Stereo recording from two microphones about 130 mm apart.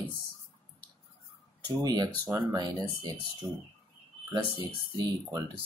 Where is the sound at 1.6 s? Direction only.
30° right (ahead or behind).